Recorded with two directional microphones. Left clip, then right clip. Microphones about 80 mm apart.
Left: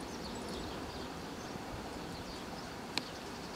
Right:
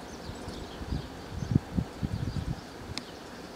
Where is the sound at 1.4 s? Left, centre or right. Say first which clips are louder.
Right 10 dB; centre.